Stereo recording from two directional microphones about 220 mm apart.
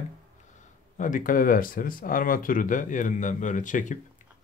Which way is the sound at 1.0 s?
35° left (ahead or behind).